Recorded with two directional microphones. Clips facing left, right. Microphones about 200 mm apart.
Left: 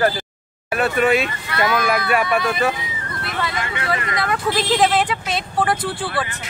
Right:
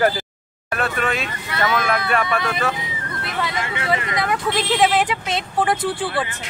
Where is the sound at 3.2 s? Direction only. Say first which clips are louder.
Even; 20° right (ahead or behind).